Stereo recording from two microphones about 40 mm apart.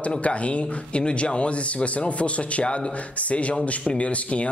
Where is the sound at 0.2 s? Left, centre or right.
Left.